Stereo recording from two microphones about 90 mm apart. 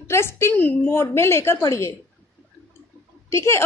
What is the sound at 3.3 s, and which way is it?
Speech, 30° left (ahead or behind).